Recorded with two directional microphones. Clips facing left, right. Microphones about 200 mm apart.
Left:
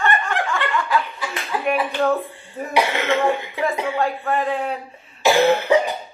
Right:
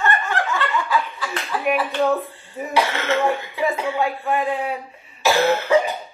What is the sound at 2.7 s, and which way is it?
Speech, 15° left (ahead or behind).